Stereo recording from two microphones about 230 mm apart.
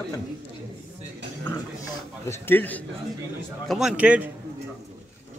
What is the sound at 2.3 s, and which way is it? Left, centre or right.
Speech, centre.